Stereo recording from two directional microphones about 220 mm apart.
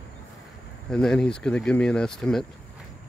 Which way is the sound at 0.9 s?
5° left (ahead or behind).